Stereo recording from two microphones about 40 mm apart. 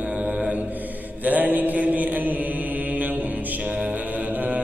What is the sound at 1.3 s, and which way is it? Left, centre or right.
Mantra, right.